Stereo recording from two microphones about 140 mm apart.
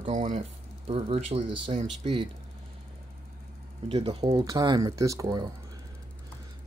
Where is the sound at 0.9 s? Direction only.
45° right (ahead or behind).